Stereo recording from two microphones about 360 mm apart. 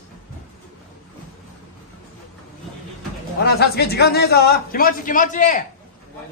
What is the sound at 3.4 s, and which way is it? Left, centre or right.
A man's voice, left.